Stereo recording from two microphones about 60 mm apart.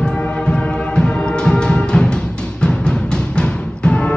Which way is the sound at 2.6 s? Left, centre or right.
Centre.